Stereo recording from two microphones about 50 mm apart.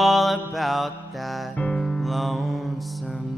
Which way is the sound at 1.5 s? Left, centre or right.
Left.